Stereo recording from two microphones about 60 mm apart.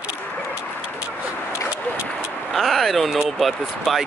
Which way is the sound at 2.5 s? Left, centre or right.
Centre.